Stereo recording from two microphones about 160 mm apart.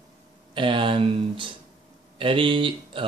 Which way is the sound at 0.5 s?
30° right (ahead or behind).